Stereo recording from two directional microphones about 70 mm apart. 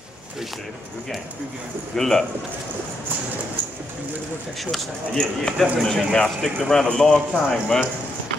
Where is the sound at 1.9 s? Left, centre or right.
Centre.